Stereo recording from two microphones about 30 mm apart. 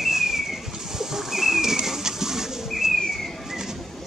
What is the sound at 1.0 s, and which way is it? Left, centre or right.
Pigeon, centre.